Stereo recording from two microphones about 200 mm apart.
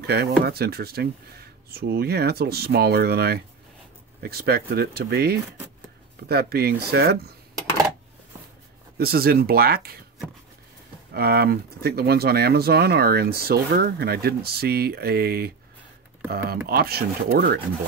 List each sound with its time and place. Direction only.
0.0 s speech: 55° right (ahead or behind)
8.9 s speech: 50° right (ahead or behind)
11.1 s speech: 50° right (ahead or behind)